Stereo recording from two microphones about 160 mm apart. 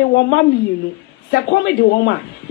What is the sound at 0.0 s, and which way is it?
Speech, 90° left.